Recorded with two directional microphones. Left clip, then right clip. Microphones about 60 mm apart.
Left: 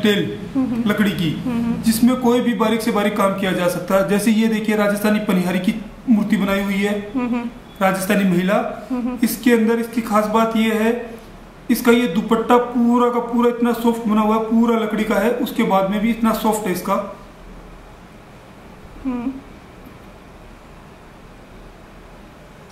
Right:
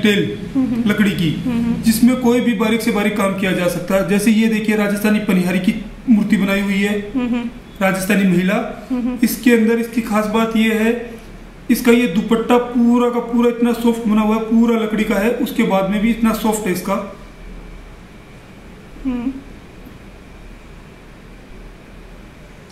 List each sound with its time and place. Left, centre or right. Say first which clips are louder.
0.6 s a woman's voice: right 2 dB; centre